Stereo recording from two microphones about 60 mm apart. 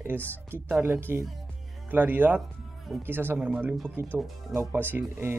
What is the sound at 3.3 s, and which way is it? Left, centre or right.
Speech, centre.